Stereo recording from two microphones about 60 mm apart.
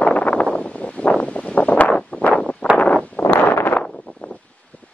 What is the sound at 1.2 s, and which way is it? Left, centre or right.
Wind, left.